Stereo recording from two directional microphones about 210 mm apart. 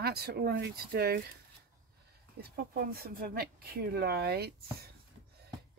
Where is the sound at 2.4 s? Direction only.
45° right (ahead or behind).